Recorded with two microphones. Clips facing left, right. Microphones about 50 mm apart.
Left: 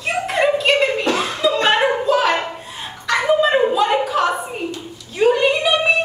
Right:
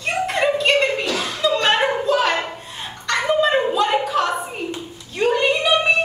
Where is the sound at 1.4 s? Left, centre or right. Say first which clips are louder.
Left 1 dB; centre.